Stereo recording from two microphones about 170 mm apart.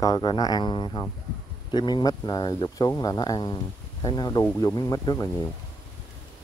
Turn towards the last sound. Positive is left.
turn(degrees=25)  # may be behind; listen again after turning